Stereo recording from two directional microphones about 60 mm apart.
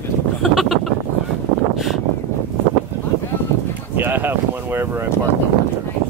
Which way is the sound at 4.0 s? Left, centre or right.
Right.